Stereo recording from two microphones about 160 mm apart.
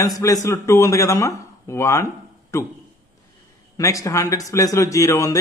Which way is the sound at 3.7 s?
20° left (ahead or behind).